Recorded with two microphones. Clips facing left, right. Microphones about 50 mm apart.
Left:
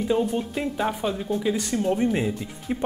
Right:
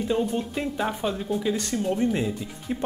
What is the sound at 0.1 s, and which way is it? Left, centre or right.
Speech, centre.